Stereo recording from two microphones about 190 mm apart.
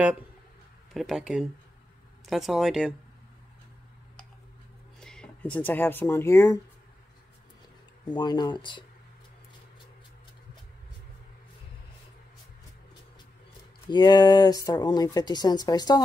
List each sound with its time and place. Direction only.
0.9 s speech: centre (ahead or behind)
5.0 s speech: 5° left (ahead or behind)
8.0 s speech: 20° left (ahead or behind)
13.8 s speech: 20° left (ahead or behind)